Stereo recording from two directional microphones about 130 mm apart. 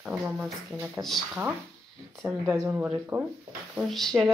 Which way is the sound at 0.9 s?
Centre (ahead or behind).